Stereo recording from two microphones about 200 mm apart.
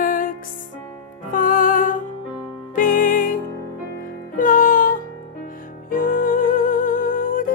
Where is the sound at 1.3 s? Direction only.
45° left (ahead or behind).